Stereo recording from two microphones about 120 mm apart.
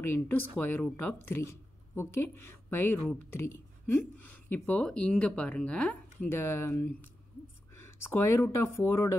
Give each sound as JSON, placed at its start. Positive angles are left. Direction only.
{"t": 0.0, "sound": "speech", "side_deg": 20}
{"t": 6.2, "sound": "speech", "side_deg": 20}